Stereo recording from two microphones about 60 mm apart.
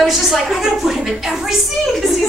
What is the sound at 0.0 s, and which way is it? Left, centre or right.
A woman's voice, centre.